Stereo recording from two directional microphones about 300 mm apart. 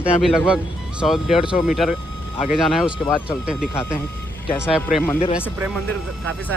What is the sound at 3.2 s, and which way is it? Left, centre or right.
Speech, centre.